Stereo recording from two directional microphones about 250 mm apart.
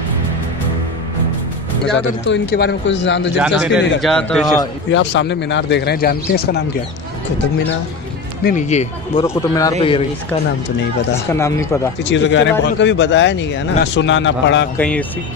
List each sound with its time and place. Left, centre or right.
1.9 s a man's voice: left
3.3 s a man's voice: centre
4.9 s a man's voice: left
8.5 s speech: left
9.2 s a man's voice: centre
11.3 s a man's voice: centre
12.0 s a man's voice: left
14.8 s a man's voice: centre